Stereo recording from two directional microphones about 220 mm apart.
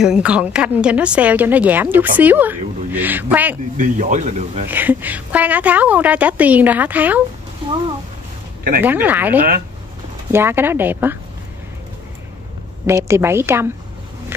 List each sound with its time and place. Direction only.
0.0 s a woman's voice: 5° right (ahead or behind)
3.7 s speech: 35° right (ahead or behind)
4.6 s a woman's voice: 10° right (ahead or behind)
8.8 s a woman's voice: 10° right (ahead or behind)
12.8 s a woman's voice: 10° right (ahead or behind)